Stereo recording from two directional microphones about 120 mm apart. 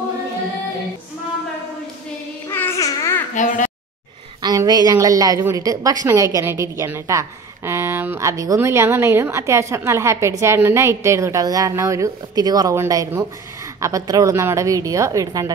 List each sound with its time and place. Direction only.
2.5 s babbling: 20° left (ahead or behind)
3.3 s a sound: 90° left
4.4 s a woman's voice: 35° right (ahead or behind)